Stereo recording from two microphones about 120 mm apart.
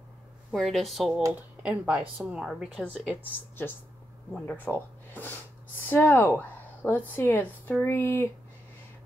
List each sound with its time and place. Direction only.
0.5 s speech: centre (ahead or behind)
2.8 s speech: 10° left (ahead or behind)